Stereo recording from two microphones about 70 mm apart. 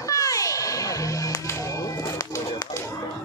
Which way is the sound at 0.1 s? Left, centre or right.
Left.